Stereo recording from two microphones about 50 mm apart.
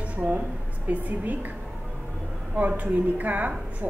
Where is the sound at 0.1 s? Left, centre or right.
Right.